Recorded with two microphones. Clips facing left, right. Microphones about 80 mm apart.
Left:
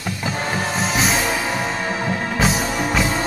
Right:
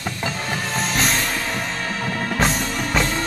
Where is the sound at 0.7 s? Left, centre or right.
Centre.